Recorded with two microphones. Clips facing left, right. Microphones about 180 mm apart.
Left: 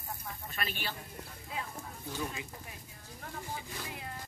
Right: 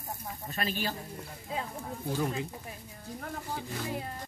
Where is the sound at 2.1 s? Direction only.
55° right (ahead or behind).